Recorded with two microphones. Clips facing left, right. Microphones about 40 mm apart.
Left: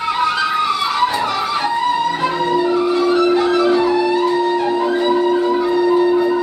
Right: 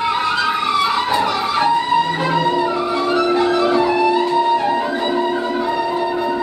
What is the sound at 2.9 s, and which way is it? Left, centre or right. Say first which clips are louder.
Music: left 3 dB; right.